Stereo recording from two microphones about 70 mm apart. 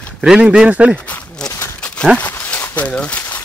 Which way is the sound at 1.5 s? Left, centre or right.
Left.